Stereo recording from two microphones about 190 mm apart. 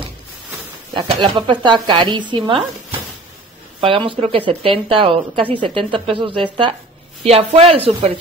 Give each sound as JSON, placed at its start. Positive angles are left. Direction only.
{"t": 0.9, "sound": "a woman's voice", "side_deg": -25}
{"t": 3.8, "sound": "a woman's voice", "side_deg": -25}